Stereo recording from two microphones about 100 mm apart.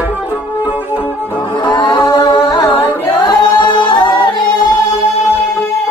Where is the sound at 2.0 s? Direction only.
45° left (ahead or behind).